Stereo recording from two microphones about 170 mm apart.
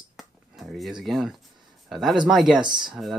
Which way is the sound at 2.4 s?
25° right (ahead or behind).